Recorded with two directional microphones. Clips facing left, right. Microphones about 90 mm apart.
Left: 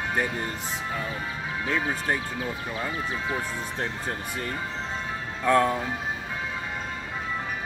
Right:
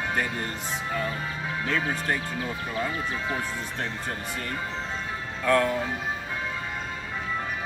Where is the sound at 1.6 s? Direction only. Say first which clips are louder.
Left 1 dB; 15° left (ahead or behind).